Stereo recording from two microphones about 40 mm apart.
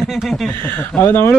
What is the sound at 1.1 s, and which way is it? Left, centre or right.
Speech, left.